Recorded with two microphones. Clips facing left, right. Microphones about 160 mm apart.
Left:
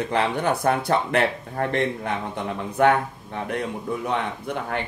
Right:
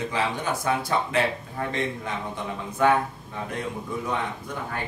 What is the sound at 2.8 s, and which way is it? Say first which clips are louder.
Speech: left 3 dB; 60° left (ahead or behind).